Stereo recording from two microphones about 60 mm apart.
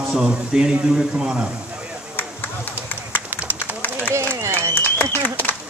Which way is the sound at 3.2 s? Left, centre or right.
Right.